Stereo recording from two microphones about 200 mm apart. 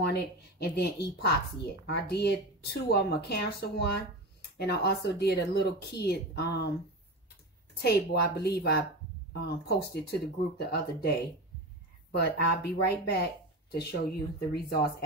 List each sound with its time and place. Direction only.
0.0 s speech: 55° left (ahead or behind)
7.7 s speech: 55° left (ahead or behind)